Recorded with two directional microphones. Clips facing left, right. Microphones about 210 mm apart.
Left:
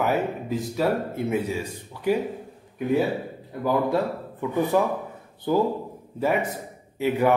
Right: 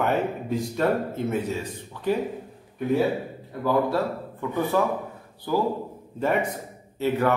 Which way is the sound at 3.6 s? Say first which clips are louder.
Even; 15° left (ahead or behind).